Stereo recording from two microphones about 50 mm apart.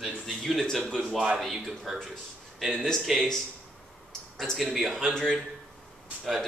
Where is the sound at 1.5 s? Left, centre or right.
Centre.